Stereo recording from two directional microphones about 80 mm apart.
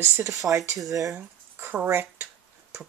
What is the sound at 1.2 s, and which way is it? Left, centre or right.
Speech, right.